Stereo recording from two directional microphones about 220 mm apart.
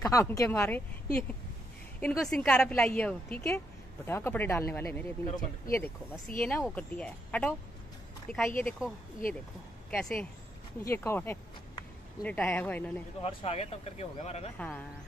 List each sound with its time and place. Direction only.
0.0 s a woman's voice: 15° left (ahead or behind)
8.6 s a woman's voice: centre (ahead or behind)
13.2 s speech: 25° left (ahead or behind)
14.6 s a woman's voice: 5° left (ahead or behind)